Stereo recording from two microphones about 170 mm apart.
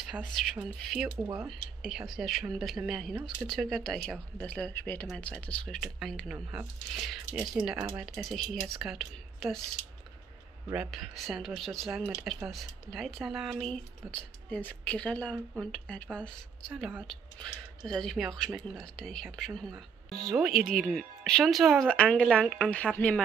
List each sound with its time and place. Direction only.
0.0 s speech: centre (ahead or behind)
1.1 s speech: 15° right (ahead or behind)
1.5 s speech: centre (ahead or behind)
10.7 s speech: 5° right (ahead or behind)